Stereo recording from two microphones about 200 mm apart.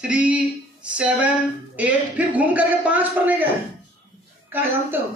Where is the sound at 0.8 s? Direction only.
5° right (ahead or behind).